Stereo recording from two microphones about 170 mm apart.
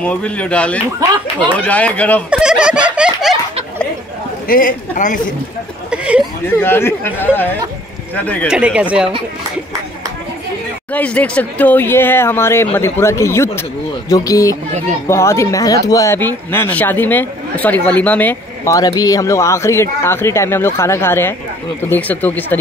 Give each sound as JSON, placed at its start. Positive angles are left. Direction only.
{"t": 0.0, "sound": "speech", "side_deg": 10}
{"t": 2.3, "sound": "snicker", "side_deg": -5}
{"t": 4.5, "sound": "a man's voice", "side_deg": 55}
{"t": 5.9, "sound": "a sound", "side_deg": -5}
{"t": 6.6, "sound": "speech", "side_deg": 15}
{"t": 8.5, "sound": "speech", "side_deg": -5}
{"t": 10.9, "sound": "speech", "side_deg": 10}